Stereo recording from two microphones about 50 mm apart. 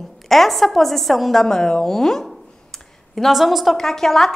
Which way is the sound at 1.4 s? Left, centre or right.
Centre.